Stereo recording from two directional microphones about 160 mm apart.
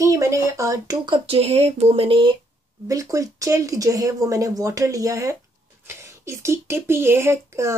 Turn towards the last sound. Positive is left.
turn(degrees=-15)  # may be behind; listen again after turning